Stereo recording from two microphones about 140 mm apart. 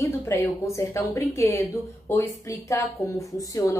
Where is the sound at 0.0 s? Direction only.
20° left (ahead or behind).